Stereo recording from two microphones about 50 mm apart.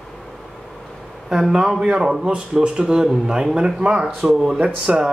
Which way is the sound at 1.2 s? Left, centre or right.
Centre.